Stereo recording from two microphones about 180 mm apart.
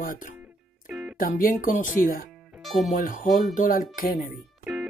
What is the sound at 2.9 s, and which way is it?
Speech, 45° left (ahead or behind).